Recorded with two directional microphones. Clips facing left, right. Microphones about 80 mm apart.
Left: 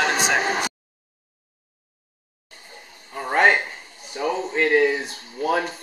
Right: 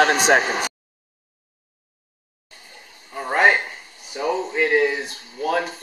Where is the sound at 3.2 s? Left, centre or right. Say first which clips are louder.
Even; centre.